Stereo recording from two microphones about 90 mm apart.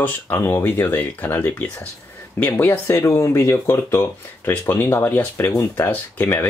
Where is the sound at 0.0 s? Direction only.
25° left (ahead or behind).